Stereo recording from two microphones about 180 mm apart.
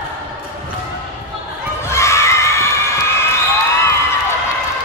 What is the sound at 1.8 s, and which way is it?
Crowd, 15° left (ahead or behind).